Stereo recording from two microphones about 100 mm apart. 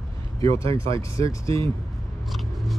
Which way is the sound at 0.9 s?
30° left (ahead or behind).